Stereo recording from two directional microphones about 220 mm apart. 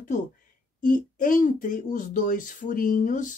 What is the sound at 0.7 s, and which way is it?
Speech, 35° left (ahead or behind).